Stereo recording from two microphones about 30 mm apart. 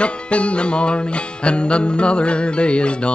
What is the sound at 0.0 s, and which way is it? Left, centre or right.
Music, left.